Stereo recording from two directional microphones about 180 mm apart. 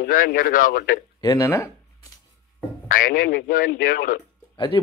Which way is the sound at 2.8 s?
50° left (ahead or behind).